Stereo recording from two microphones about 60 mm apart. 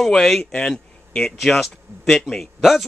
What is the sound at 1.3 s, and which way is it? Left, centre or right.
Speech, centre.